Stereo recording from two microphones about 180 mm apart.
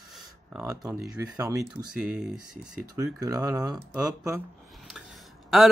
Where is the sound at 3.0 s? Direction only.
20° right (ahead or behind).